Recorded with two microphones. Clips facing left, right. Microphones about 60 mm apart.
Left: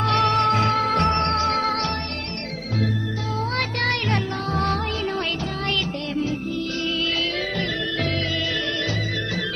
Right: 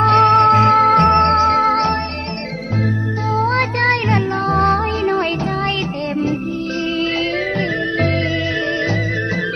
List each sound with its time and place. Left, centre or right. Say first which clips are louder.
0.0 s music: right 9 dB; right
3.3 s music: right 9 dB; right